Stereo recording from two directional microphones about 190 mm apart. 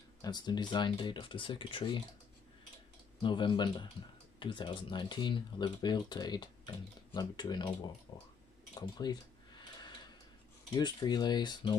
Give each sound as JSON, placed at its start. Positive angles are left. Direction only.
{"t": 0.2, "sound": "speech", "side_deg": 20}
{"t": 3.2, "sound": "speech", "side_deg": 25}
{"t": 8.7, "sound": "a sound", "side_deg": 20}
{"t": 10.8, "sound": "speech", "side_deg": 20}